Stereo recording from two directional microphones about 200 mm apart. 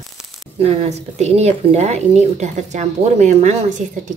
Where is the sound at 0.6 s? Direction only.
30° right (ahead or behind).